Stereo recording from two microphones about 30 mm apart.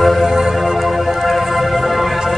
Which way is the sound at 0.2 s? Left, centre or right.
Centre.